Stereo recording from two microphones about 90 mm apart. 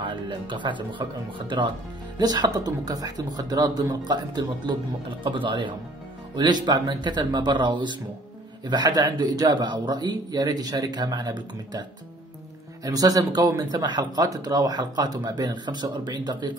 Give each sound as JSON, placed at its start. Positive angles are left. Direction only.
{"t": 0.0, "sound": "speech", "side_deg": -60}
{"t": 2.1, "sound": "speech", "side_deg": -50}
{"t": 5.2, "sound": "speech", "side_deg": -65}
{"t": 12.8, "sound": "speech", "side_deg": -45}